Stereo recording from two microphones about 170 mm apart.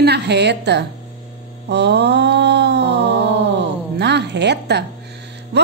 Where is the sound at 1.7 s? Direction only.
90° right.